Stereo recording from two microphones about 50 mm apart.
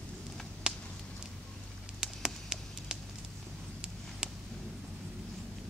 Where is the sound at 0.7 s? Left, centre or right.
Centre.